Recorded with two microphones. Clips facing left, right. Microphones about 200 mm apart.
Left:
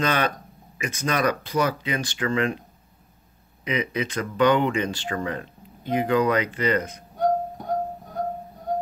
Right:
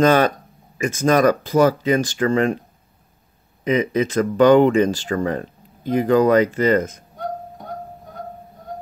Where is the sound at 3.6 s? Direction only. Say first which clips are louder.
Right 8 dB; 45° right (ahead or behind).